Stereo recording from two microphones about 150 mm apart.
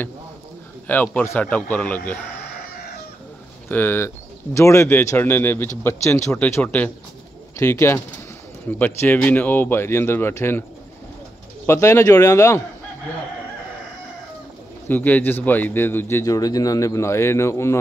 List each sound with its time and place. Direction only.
0.8 s a man's voice: 10° left (ahead or behind)
3.6 s a man's voice: 10° left (ahead or behind)
11.6 s speech: 20° left (ahead or behind)
14.9 s a man's voice: 10° left (ahead or behind)